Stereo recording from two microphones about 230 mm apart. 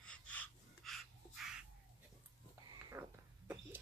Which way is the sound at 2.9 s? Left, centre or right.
Centre.